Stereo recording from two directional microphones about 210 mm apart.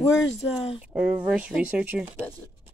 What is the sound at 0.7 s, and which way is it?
Speech, 5° right (ahead or behind).